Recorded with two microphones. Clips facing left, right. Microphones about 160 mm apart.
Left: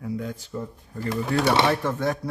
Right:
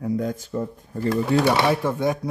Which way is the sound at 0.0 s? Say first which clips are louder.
Right 6 dB; 45° right (ahead or behind).